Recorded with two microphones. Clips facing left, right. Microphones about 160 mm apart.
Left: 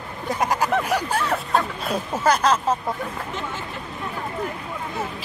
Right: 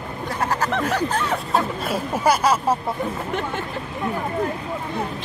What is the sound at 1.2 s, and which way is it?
Speech, centre (ahead or behind).